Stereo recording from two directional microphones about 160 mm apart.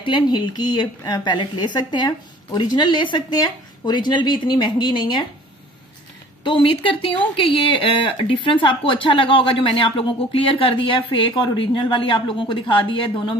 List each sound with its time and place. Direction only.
0.0 s speech: 30° left (ahead or behind)
6.4 s speech: 30° left (ahead or behind)